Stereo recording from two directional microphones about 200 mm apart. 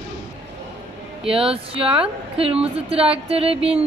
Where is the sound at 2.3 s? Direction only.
30° right (ahead or behind).